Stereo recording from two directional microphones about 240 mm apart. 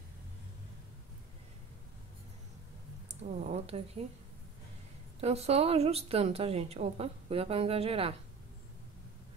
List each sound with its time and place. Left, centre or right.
3.1 s speech: right
5.2 s a woman's voice: right